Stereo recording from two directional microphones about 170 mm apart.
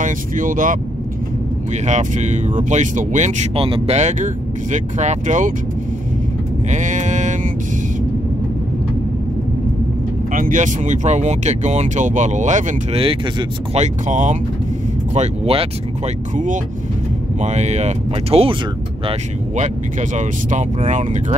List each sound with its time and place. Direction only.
0.0 s speech: 50° right (ahead or behind)
1.9 s speech: 45° right (ahead or behind)
6.7 s a sound: 45° right (ahead or behind)
10.3 s speech: 50° right (ahead or behind)
13.0 s speech: 35° right (ahead or behind)
14.0 s speech: 45° right (ahead or behind)
15.1 s speech: 35° right (ahead or behind)
17.4 s speech: 40° right (ahead or behind)